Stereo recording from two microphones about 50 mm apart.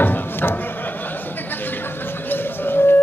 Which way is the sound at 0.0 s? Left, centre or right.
Left.